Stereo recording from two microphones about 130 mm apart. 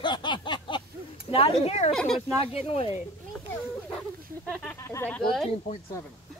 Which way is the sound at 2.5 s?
50° left (ahead or behind).